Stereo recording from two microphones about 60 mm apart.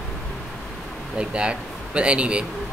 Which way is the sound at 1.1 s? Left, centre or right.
Centre.